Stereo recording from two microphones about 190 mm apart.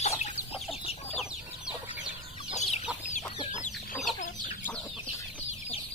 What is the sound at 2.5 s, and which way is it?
Chicken, 35° left (ahead or behind).